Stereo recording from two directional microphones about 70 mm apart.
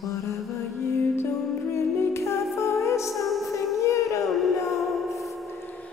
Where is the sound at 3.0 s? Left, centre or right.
Centre.